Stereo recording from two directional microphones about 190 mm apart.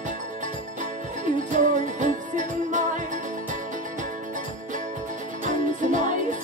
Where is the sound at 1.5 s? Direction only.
40° right (ahead or behind).